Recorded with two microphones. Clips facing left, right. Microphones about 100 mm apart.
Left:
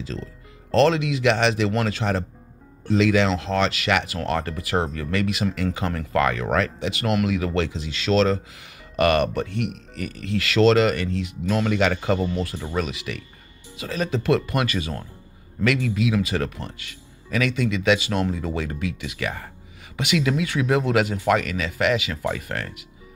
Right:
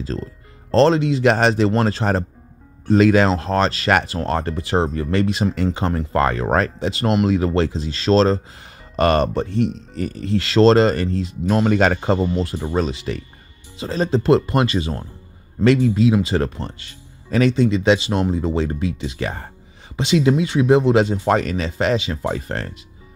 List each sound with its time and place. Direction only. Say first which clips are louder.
0.7 s speech: right 4 dB; 35° right (ahead or behind)